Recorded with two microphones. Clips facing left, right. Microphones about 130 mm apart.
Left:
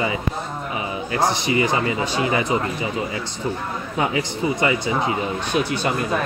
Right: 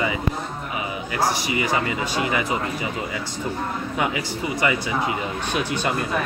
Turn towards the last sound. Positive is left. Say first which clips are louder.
# left 3 dB
turn(degrees=-15)  # may be behind; listen again after turning